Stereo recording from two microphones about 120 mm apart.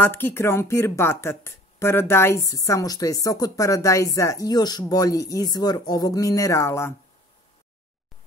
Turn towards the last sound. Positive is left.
turn(degrees=25)  # may be behind; listen again after turning